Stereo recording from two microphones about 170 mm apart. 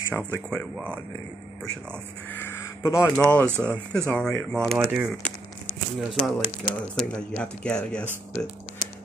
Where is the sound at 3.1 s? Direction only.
5° left (ahead or behind).